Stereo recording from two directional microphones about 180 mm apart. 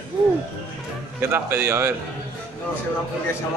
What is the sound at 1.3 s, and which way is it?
Speech, 10° right (ahead or behind).